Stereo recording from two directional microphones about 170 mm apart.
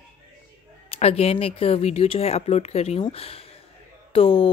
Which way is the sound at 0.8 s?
35° left (ahead or behind).